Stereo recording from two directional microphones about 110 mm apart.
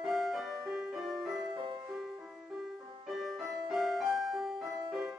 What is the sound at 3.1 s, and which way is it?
Music, centre (ahead or behind).